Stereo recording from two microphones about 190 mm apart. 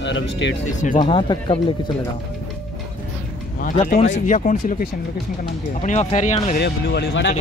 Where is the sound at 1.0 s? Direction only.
30° left (ahead or behind).